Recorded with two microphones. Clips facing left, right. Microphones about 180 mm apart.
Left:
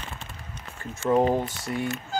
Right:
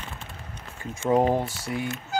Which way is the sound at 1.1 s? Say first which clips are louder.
Even; 10° right (ahead or behind).